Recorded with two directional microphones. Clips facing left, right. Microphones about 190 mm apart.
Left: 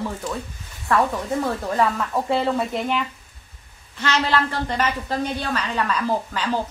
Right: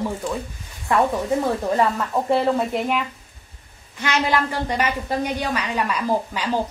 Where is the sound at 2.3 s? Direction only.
5° right (ahead or behind).